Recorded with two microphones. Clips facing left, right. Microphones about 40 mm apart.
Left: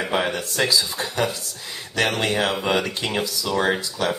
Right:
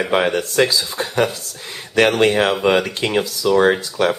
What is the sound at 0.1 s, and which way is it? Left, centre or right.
Speech, right.